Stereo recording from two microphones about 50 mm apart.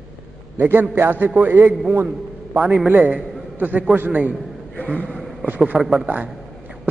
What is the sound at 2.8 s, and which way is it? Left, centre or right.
A man's voice, right.